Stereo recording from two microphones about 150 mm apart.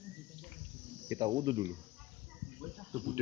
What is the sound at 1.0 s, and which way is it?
Speech, 25° right (ahead or behind).